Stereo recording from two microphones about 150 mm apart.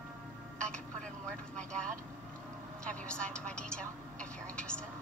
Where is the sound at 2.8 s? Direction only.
5° left (ahead or behind).